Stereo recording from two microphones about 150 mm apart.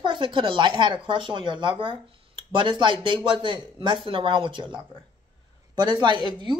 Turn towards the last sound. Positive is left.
turn(degrees=-30)  # may be behind; listen again after turning